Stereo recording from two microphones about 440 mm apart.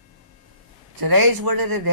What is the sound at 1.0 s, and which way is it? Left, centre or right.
Speech, right.